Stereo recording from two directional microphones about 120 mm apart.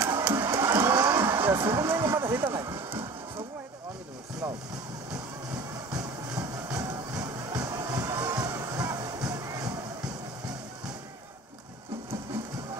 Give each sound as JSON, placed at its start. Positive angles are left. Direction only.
{"t": 0.0, "sound": "music", "side_deg": -25}
{"t": 5.9, "sound": "music", "side_deg": -30}